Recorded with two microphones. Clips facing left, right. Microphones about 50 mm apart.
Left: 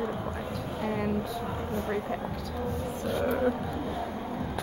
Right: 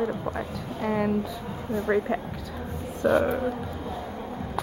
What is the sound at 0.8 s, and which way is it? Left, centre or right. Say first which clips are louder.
Speech: right 6 dB; centre.